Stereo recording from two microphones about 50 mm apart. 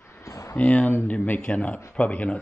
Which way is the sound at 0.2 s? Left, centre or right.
Left.